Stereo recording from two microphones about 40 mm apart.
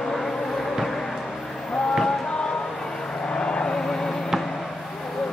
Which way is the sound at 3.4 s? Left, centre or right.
Left.